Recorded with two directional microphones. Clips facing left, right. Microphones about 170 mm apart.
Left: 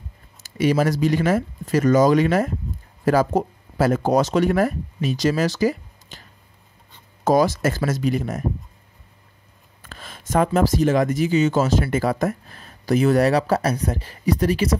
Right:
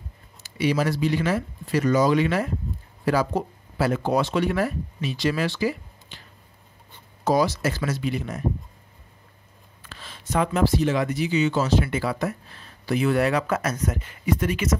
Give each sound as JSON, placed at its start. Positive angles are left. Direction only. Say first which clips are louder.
{"t": 0.4, "sound": "speech", "louder": "left 4 dB", "side_deg": 45}
{"t": 7.2, "sound": "speech", "louder": "left 4 dB", "side_deg": 50}
{"t": 9.8, "sound": "speech", "louder": "left 1 dB", "side_deg": 45}